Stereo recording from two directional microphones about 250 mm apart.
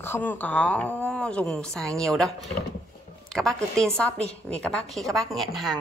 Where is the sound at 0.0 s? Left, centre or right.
Centre.